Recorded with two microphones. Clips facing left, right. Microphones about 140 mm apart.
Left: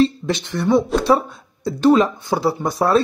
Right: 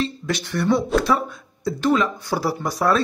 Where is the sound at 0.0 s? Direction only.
25° left (ahead or behind).